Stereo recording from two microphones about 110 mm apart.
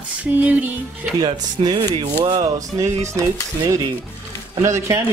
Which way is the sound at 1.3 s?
45° right (ahead or behind).